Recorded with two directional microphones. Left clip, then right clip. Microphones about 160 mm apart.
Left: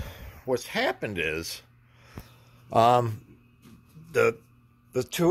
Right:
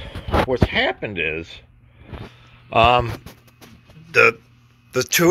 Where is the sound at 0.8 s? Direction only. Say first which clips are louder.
Right 6 dB; 10° left (ahead or behind).